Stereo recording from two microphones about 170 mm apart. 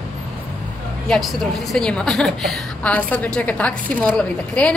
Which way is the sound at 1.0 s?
Centre (ahead or behind).